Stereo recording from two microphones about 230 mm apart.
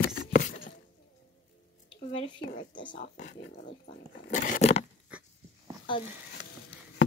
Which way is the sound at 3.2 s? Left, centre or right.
Left.